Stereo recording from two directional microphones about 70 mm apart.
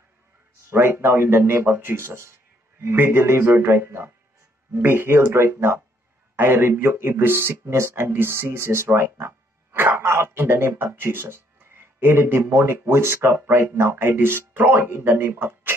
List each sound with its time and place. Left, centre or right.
0.7 s speech: right